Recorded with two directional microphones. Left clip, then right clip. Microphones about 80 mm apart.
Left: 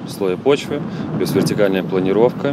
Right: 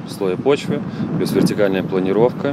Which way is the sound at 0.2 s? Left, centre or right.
Centre.